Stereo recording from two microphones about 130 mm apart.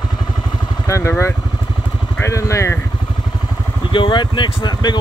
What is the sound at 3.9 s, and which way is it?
Speech, 40° left (ahead or behind).